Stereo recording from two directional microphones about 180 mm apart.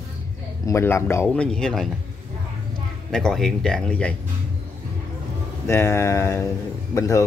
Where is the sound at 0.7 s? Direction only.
15° left (ahead or behind).